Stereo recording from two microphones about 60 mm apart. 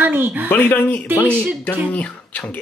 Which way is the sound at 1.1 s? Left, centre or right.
Right.